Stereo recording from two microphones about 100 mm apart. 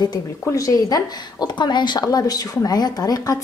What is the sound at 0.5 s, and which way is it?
Speech, 35° left (ahead or behind).